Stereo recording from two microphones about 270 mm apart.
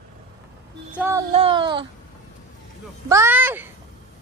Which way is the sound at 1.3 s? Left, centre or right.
Centre.